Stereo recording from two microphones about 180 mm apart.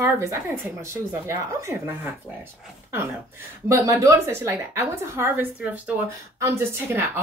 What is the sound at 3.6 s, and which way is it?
A woman's voice, 15° right (ahead or behind).